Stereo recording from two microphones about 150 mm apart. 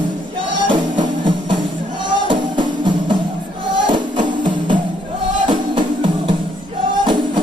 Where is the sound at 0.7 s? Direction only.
30° right (ahead or behind).